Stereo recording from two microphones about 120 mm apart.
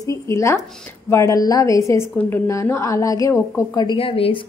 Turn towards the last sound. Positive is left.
turn(degrees=50)  # may be behind; listen again after turning